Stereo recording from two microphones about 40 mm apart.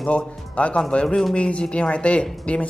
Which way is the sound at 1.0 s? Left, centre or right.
Centre.